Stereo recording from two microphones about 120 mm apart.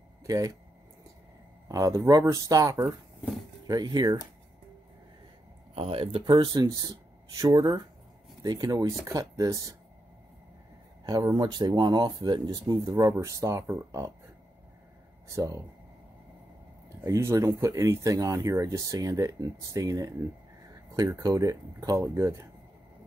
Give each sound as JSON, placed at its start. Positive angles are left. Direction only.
{"t": 0.2, "sound": "a sound", "side_deg": -30}
{"t": 1.7, "sound": "speech", "side_deg": -30}
{"t": 5.8, "sound": "speech", "side_deg": -50}
{"t": 11.1, "sound": "speech", "side_deg": -35}
{"t": 15.2, "sound": "speech", "side_deg": -25}
{"t": 17.0, "sound": "speech", "side_deg": -25}